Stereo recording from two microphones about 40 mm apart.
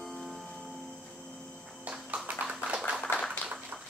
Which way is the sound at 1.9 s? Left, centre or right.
Right.